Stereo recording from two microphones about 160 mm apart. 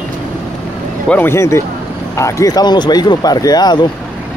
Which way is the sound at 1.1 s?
15° left (ahead or behind).